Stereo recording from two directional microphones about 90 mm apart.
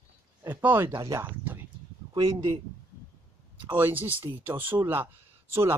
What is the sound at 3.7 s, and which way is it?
Speech, 25° right (ahead or behind).